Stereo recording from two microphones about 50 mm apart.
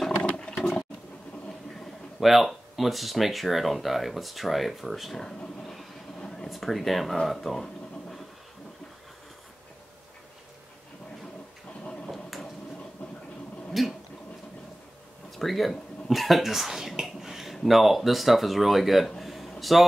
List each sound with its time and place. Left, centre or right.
0.2 s a sound: centre
2.1 s speech: centre
5.6 s vehicle: centre
6.5 s speech: centre
12.1 s a sound: centre
13.7 s speech: centre
15.3 s speech: centre